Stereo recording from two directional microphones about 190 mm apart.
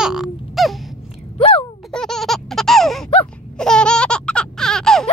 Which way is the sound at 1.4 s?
30° left (ahead or behind).